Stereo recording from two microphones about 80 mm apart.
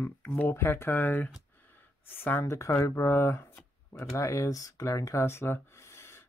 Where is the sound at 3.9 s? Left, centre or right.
Left.